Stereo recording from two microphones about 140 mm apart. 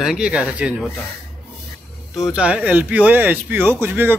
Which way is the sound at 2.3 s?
10° right (ahead or behind).